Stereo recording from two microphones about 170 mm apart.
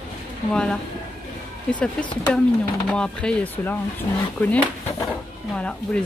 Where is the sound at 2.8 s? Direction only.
5° left (ahead or behind).